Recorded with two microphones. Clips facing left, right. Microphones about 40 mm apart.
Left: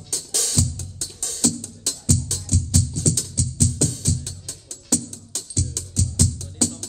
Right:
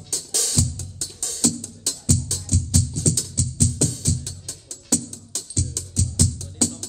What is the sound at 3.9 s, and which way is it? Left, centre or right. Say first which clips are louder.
Music: even; left.